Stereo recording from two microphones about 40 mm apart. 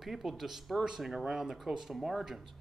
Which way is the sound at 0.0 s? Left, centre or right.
Centre.